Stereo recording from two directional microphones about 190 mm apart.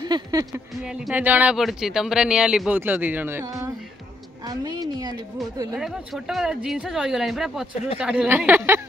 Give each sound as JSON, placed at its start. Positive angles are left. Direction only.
{"t": 0.0, "sound": "a sound", "side_deg": -20}
{"t": 0.8, "sound": "a woman's voice", "side_deg": -5}
{"t": 5.8, "sound": "speech", "side_deg": 0}